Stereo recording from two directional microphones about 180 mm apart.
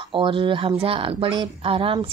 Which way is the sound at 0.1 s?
30° right (ahead or behind).